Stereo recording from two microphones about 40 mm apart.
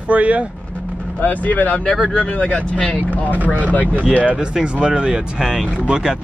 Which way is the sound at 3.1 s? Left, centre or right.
Right.